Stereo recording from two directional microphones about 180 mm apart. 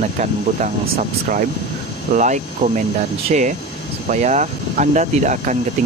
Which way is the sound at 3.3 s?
40° right (ahead or behind).